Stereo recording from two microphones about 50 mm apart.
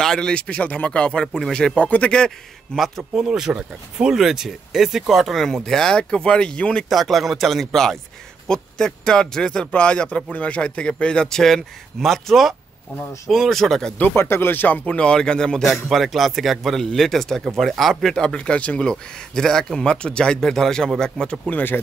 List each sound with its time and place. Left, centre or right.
0.0 s speech: centre
0.4 s speech: left
1.2 s a man's voice: centre
1.8 s speech: left
2.1 s a man's voice: centre
3.2 s speech: centre
4.2 s a man's voice: centre
6.9 s a man's voice: centre
14.1 s speech: left
14.9 s a man's voice: centre
15.6 s speech: centre
18.1 s speech: centre
18.9 s a man's voice: centre
21.5 s speech: left